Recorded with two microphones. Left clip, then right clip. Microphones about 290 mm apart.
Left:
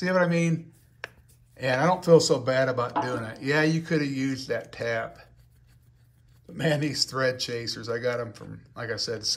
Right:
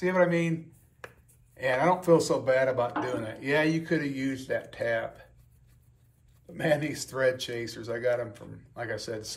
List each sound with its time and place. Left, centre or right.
0.1 s speech: centre
1.8 s speech: centre
6.8 s speech: centre